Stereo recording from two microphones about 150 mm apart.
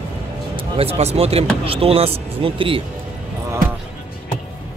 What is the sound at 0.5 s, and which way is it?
Speech, 40° right (ahead or behind).